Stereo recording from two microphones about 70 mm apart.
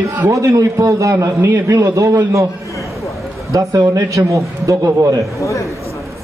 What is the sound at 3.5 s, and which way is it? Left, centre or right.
A man's voice, right.